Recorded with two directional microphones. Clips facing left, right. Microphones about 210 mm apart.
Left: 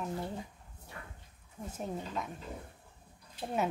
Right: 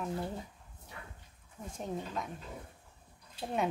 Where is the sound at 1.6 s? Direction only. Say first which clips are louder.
Even; 5° left (ahead or behind).